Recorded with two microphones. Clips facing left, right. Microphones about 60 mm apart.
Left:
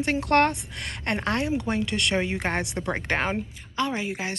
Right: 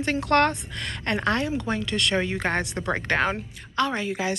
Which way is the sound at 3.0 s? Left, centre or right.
Centre.